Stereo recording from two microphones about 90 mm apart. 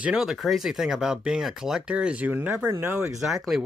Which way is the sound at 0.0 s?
10° right (ahead or behind).